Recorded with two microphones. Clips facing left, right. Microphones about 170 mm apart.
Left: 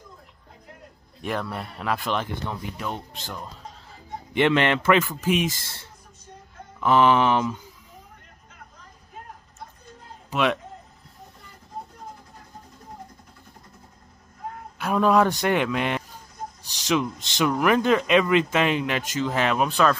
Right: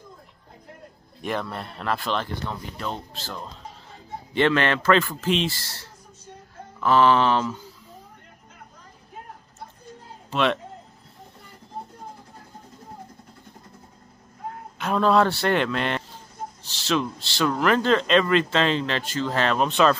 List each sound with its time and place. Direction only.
1.2 s speech: 5° left (ahead or behind)
10.3 s speech: 10° left (ahead or behind)
14.8 s a man's voice: 10° left (ahead or behind)